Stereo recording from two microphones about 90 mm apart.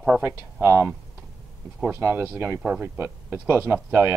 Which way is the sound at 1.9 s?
25° right (ahead or behind).